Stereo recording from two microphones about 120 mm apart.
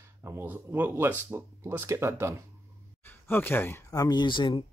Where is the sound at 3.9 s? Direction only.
30° left (ahead or behind).